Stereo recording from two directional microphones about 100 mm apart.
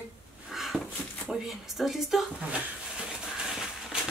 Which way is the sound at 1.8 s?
Centre (ahead or behind).